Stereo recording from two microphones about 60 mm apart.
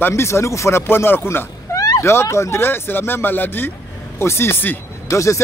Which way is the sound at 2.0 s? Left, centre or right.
Left.